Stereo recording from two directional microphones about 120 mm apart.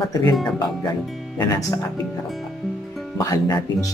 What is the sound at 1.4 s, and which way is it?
Speech, 30° left (ahead or behind).